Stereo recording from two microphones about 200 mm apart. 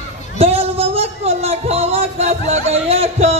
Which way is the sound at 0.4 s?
30° right (ahead or behind).